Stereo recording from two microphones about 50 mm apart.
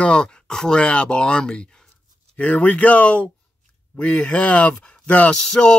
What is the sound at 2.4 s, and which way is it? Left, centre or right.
Speech, left.